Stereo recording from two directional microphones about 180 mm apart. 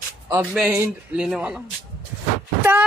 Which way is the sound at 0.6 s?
10° right (ahead or behind).